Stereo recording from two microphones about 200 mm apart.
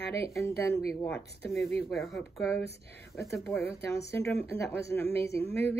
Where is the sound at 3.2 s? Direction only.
15° left (ahead or behind).